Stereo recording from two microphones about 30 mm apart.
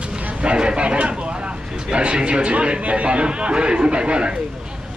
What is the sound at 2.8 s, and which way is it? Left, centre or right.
A man's voice, right.